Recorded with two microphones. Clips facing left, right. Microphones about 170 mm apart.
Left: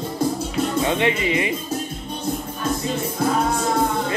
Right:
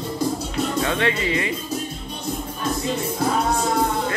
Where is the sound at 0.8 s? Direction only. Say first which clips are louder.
Left 2 dB; 20° left (ahead or behind).